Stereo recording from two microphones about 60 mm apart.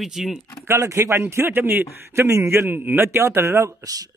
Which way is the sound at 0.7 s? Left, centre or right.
Right.